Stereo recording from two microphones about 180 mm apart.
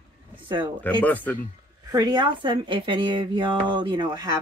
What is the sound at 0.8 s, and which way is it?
Speech, 10° left (ahead or behind).